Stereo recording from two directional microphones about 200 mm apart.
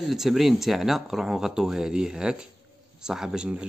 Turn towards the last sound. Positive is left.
turn(degrees=-5)  # may be behind; listen again after turning